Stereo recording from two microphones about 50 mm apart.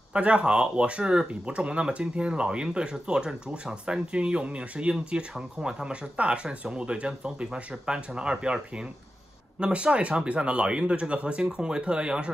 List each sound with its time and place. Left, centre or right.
0.1 s speech: right